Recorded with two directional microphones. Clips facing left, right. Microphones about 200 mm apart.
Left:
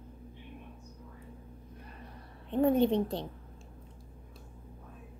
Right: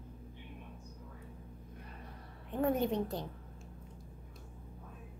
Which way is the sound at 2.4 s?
25° left (ahead or behind).